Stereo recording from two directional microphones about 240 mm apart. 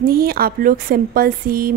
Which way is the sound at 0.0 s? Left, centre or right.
Right.